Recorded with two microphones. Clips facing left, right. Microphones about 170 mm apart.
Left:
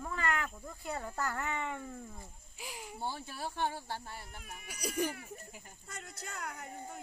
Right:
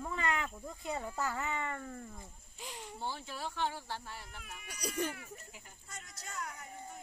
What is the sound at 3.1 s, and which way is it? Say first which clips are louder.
Speech: left 1 dB; 45° left (ahead or behind).